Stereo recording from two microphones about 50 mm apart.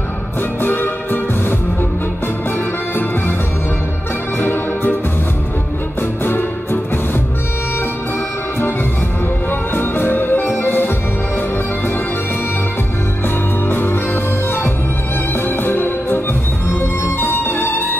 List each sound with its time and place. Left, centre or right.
0.6 s music: left
4.4 s music: left
6.2 s music: left
9.5 s music: left
13.7 s music: left
15.3 s music: left
16.6 s music: left
17.2 s music: left